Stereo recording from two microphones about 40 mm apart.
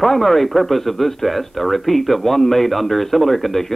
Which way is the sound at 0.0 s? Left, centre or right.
Centre.